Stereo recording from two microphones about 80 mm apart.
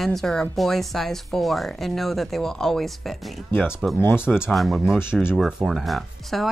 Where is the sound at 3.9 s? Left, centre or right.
Left.